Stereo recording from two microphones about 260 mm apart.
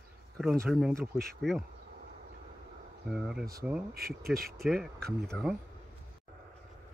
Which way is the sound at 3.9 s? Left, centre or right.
Right.